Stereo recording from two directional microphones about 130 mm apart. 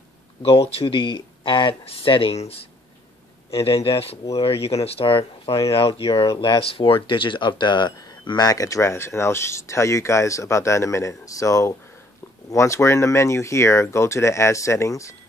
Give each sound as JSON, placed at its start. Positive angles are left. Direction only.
{"t": 0.4, "sound": "speech", "side_deg": 45}